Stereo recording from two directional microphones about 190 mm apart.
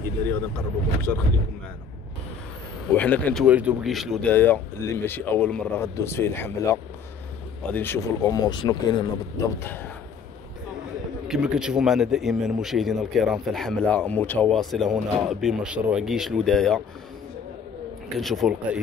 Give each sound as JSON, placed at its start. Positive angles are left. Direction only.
{"t": 1.1, "sound": "speech", "side_deg": 10}
{"t": 2.9, "sound": "speech", "side_deg": 10}
{"t": 3.4, "sound": "speech", "side_deg": -5}
{"t": 11.2, "sound": "a man's voice", "side_deg": -5}
{"t": 18.2, "sound": "a man's voice", "side_deg": 0}